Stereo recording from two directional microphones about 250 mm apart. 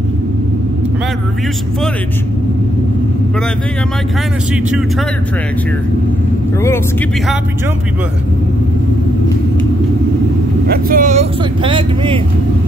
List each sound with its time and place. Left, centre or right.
10.7 s speech: right